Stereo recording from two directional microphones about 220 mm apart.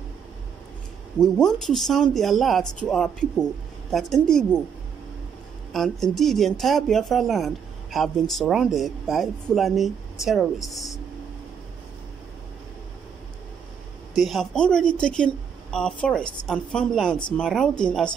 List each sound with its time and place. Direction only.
1.2 s speech: centre (ahead or behind)
5.7 s speech: centre (ahead or behind)
14.1 s speech: centre (ahead or behind)